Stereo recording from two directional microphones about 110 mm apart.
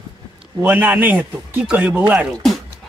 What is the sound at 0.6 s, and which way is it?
Speech, 15° right (ahead or behind).